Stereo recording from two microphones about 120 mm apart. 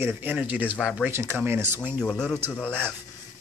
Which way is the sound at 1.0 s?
20° right (ahead or behind).